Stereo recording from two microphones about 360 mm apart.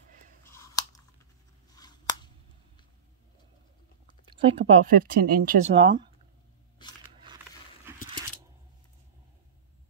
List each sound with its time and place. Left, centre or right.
0.5 s chewing: centre
1.8 s scissors: centre
4.4 s speech: centre
7.9 s a sound: centre